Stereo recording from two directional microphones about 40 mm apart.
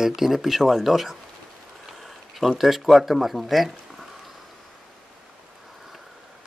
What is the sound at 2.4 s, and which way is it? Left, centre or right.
Speech, centre.